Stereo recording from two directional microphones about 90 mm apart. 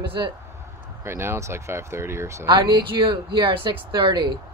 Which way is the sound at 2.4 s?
60° right (ahead or behind).